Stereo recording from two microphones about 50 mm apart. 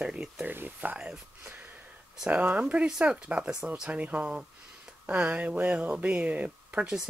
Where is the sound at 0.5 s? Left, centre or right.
Right.